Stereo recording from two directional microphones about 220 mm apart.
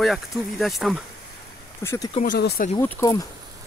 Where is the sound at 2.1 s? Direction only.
35° left (ahead or behind).